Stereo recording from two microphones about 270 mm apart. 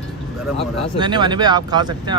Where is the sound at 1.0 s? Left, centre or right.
Centre.